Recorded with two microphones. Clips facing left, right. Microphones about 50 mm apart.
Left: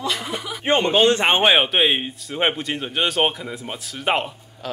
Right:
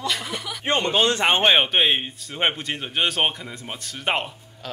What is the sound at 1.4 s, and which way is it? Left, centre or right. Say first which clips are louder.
Speech: left 1 dB; centre.